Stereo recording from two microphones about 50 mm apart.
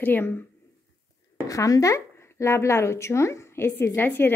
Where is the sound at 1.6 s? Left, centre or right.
Left.